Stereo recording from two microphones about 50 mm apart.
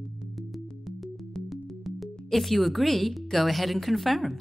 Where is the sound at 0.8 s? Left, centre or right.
Centre.